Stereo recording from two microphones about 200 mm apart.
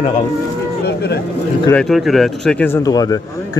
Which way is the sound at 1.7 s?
Centre (ahead or behind).